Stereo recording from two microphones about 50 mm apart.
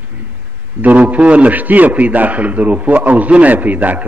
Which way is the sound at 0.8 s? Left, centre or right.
Right.